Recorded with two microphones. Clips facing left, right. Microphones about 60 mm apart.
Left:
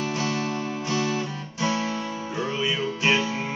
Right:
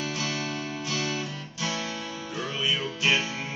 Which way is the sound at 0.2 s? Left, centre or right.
Left.